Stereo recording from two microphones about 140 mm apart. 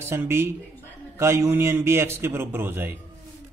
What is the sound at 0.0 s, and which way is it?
A man's voice, 15° right (ahead or behind).